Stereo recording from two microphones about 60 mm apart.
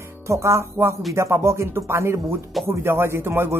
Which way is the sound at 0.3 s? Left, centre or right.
Right.